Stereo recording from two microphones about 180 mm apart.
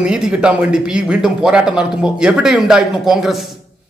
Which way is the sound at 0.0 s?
5° right (ahead or behind).